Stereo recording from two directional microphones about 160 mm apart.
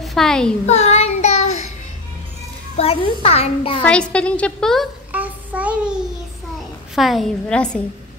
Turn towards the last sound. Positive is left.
turn(degrees=5)  # may be behind; listen again after turning